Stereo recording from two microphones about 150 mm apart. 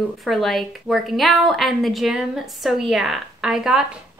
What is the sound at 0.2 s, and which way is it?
Speech, centre (ahead or behind).